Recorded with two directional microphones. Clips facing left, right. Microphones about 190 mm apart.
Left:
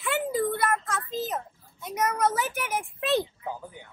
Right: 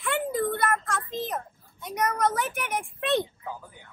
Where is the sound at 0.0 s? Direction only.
5° left (ahead or behind).